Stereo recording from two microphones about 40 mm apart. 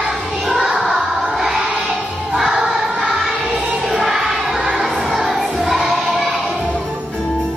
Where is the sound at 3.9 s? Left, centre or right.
Centre.